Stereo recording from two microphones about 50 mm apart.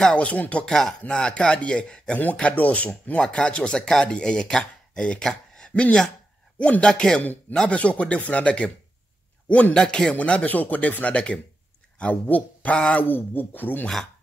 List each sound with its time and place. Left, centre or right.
0.0 s speech: left
0.7 s speech: centre
2.4 s speech: left
3.2 s speech: centre
5.7 s speech: left
7.6 s speech: left
9.8 s speech: centre
10.1 s speech: left
12.7 s speech: left
13.0 s speech: left